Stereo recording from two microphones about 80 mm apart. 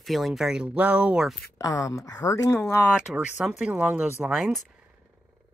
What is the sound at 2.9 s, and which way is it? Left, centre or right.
Speech, centre.